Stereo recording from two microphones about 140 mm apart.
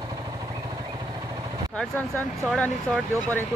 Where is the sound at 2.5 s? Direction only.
5° left (ahead or behind).